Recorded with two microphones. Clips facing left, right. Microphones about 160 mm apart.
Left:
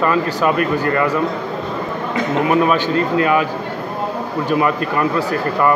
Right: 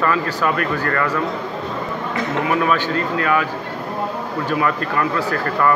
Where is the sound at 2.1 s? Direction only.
20° left (ahead or behind).